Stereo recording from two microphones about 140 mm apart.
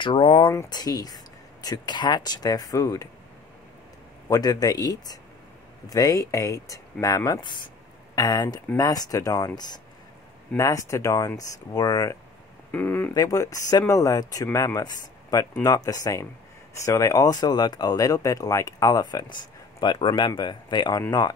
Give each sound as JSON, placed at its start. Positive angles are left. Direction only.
{"t": 0.0, "sound": "speech", "side_deg": 40}
{"t": 0.7, "sound": "speech", "side_deg": 30}
{"t": 4.3, "sound": "speech", "side_deg": 25}
{"t": 10.6, "sound": "speech", "side_deg": 25}
{"t": 12.7, "sound": "speech", "side_deg": 10}
{"t": 13.1, "sound": "speech", "side_deg": 25}